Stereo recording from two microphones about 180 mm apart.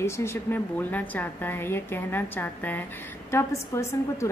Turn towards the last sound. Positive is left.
turn(degrees=15)  # may be behind; listen again after turning